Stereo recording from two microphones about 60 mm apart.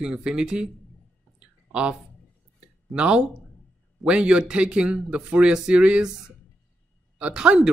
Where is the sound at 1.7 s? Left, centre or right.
Centre.